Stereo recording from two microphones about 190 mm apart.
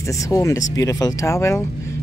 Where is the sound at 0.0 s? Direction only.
15° left (ahead or behind).